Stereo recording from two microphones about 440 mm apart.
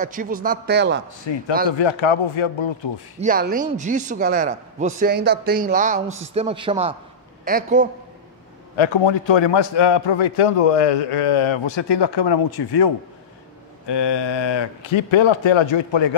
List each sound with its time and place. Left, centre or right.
0.0 s speech: centre
1.3 s a man's voice: left
1.7 s speech: left
3.2 s a man's voice: centre
8.7 s a man's voice: left